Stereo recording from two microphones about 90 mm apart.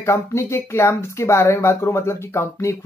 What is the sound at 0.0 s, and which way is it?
Speech, 30° left (ahead or behind).